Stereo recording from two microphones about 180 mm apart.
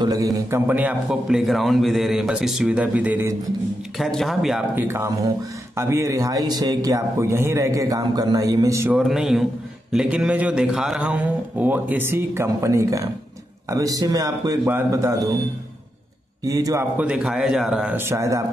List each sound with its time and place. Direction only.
0.0 s a man's voice: 20° right (ahead or behind)
4.0 s a man's voice: centre (ahead or behind)
4.8 s a man's voice: 15° right (ahead or behind)
8.9 s a man's voice: centre (ahead or behind)
16.4 s a man's voice: 20° right (ahead or behind)